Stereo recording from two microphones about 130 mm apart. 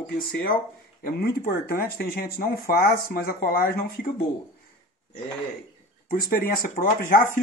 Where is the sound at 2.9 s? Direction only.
90° left.